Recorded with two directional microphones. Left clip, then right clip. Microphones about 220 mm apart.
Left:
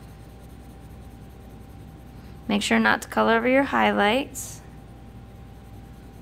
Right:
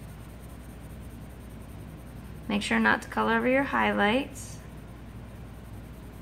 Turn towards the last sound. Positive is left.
turn(degrees=45)  # may be behind; listen again after turning